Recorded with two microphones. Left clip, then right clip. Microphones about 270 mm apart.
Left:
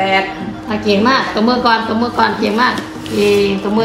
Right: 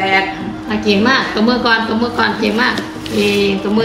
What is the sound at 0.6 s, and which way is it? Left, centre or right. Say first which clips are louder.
A woman's voice: even; centre.